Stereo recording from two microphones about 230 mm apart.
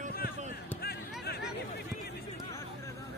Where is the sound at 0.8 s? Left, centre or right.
Left.